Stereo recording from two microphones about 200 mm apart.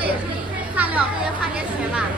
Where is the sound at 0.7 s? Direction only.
5° right (ahead or behind).